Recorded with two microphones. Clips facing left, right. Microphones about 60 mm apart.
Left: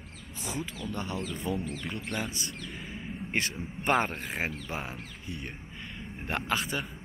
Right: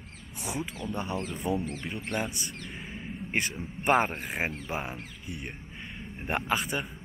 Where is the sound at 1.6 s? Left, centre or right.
Right.